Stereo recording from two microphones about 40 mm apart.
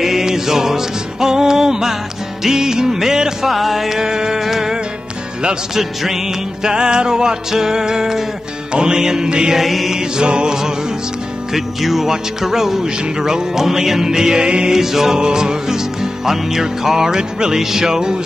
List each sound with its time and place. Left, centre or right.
0.0 s music: centre
2.4 s speech: centre
3.5 s music: centre
6.6 s speech: centre
9.6 s mantra: centre
9.9 s music: right
11.5 s speech: centre; by 14.8 s right
14.8 s speech: centre